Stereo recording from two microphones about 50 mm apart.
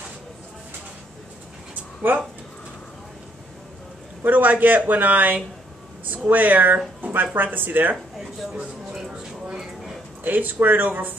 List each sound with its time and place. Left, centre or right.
2.1 s speech: right
4.2 s speech: right
7.0 s a sound: right
7.4 s speech: right
8.9 s a sound: centre
10.2 s speech: right